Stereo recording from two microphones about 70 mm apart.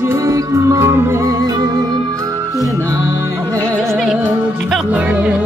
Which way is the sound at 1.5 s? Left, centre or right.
Right.